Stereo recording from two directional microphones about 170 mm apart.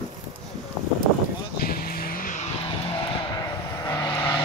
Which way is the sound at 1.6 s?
60° left (ahead or behind).